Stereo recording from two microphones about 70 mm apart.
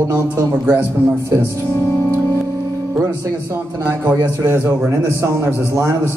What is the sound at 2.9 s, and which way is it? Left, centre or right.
A man's voice, right.